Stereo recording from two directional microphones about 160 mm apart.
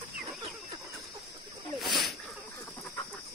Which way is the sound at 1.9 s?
30° left (ahead or behind).